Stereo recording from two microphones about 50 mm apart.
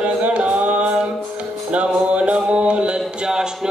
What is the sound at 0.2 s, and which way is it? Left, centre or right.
Chant, right.